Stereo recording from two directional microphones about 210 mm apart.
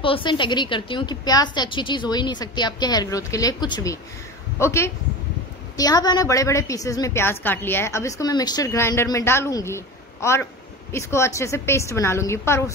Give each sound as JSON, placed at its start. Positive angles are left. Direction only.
{"t": 0.0, "sound": "a woman's voice", "side_deg": 25}